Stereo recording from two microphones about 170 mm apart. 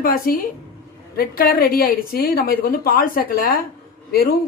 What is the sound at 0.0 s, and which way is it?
Speech, 55° left (ahead or behind).